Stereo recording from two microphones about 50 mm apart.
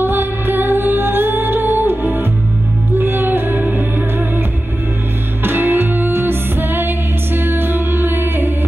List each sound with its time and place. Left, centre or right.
0.0 s music: right
5.4 s music: right